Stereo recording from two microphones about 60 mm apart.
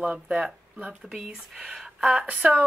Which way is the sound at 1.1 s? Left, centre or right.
Centre.